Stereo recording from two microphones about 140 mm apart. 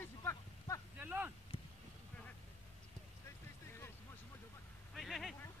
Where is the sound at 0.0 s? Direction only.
20° left (ahead or behind).